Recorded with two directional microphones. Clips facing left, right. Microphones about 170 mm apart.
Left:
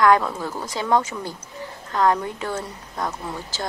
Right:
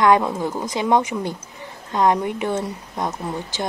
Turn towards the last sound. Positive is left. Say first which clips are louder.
# right 4 dB
turn(degrees=-20)  # may be behind; listen again after turning